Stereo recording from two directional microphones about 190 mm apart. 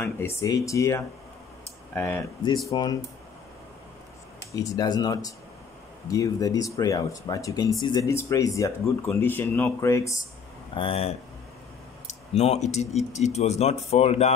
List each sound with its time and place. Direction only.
0.0 s speech: 15° left (ahead or behind)
4.5 s speech: 15° left (ahead or behind)
10.8 s speech: 30° left (ahead or behind)